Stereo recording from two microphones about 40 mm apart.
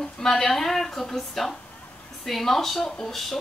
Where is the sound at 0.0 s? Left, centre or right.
Centre.